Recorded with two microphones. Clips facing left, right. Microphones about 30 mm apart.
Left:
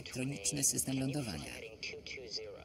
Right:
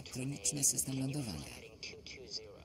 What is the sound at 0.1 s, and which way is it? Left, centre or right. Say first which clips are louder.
A man's voice: left 2 dB; left.